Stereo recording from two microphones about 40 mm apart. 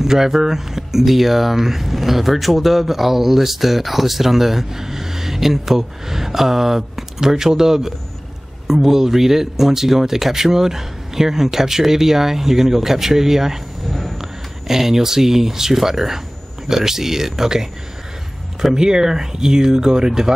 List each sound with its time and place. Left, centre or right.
0.0 s speech: centre
13.8 s a sound: centre
14.7 s speech: centre
18.8 s speech: centre